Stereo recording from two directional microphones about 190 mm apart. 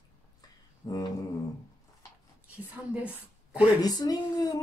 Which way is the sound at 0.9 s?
20° left (ahead or behind).